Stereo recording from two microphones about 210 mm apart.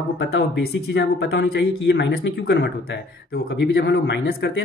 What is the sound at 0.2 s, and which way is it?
Speech, 55° left (ahead or behind).